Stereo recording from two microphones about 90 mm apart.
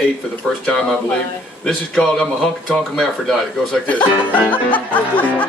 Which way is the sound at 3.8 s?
15° left (ahead or behind).